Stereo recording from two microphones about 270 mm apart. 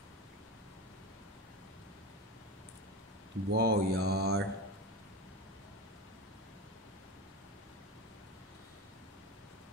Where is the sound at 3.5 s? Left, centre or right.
Right.